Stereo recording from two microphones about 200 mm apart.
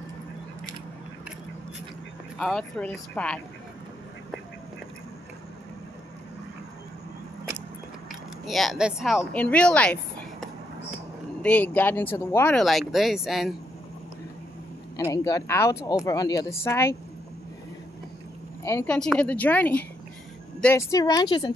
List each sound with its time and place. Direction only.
2.3 s speech: centre (ahead or behind)
8.1 s speech: centre (ahead or behind)
11.4 s speech: 10° left (ahead or behind)
15.0 s speech: 15° left (ahead or behind)
18.6 s a woman's voice: 15° left (ahead or behind)